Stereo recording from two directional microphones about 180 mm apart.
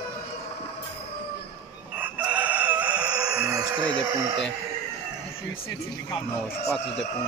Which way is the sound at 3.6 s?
5° left (ahead or behind).